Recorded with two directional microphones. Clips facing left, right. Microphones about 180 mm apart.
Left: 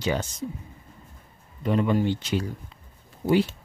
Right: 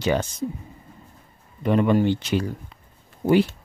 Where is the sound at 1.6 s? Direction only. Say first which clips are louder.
Right 4 dB; 65° right (ahead or behind).